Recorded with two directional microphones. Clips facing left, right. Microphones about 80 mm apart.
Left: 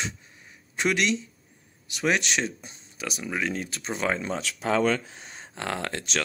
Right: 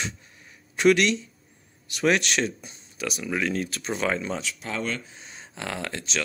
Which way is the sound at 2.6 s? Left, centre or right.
Left.